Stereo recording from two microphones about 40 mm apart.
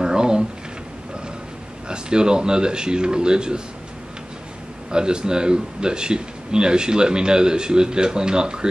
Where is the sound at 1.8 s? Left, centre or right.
Right.